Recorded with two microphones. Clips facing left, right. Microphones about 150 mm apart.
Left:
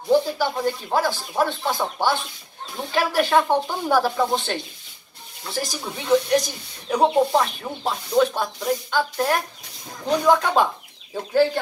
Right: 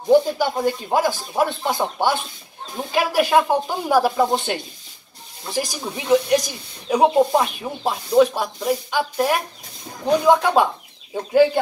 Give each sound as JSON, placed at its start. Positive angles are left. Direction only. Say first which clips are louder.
{"t": 0.1, "sound": "speech", "louder": "right 3 dB", "side_deg": -15}
{"t": 2.9, "sound": "snake", "louder": "right 2 dB", "side_deg": -10}